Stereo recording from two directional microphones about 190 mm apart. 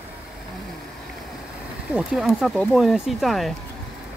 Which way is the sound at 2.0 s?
Centre (ahead or behind).